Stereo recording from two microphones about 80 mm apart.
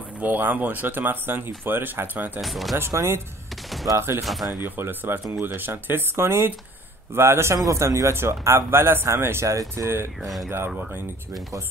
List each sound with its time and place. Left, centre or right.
0.2 s speech: right
2.4 s speech: centre
2.8 s speech: right
4.2 s speech: centre
4.5 s speech: right
10.2 s speech: centre